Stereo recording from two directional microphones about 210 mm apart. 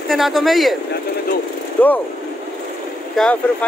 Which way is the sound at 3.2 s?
5° left (ahead or behind).